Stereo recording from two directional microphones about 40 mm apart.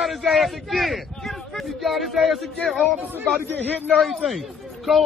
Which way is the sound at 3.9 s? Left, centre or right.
Centre.